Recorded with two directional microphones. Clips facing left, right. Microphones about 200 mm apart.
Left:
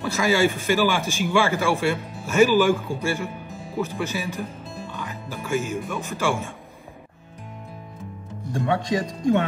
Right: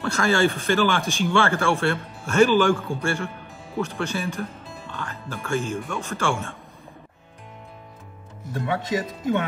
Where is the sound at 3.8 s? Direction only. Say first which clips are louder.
Even; 5° left (ahead or behind).